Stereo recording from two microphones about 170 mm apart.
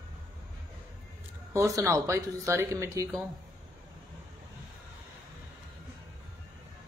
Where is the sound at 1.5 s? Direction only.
15° right (ahead or behind).